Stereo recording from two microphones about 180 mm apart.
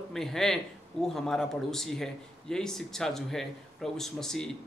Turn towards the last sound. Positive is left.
turn(degrees=5)  # may be behind; listen again after turning